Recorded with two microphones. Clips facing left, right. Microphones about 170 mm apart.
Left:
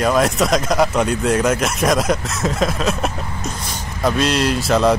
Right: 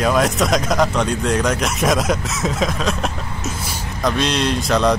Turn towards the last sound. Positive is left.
turn(degrees=5)  # may be behind; listen again after turning